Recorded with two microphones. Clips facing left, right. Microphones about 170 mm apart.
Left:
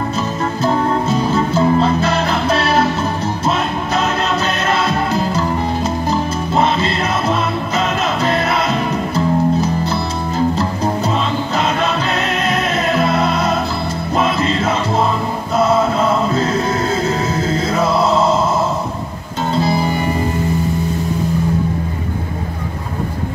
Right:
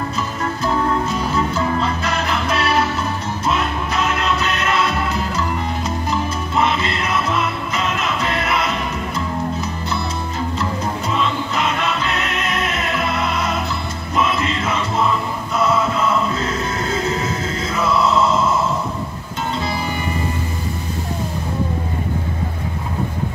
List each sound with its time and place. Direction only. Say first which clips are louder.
0.6 s music: left 3 dB; 30° left (ahead or behind)
19.5 s music: left 8 dB; 35° left (ahead or behind)